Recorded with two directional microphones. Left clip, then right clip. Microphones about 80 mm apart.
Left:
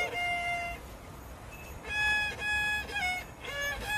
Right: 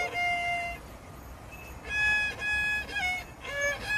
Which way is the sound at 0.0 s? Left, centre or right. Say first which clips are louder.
Right 3 dB; left.